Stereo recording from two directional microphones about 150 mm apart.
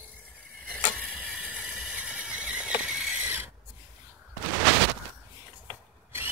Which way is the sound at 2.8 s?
5° right (ahead or behind).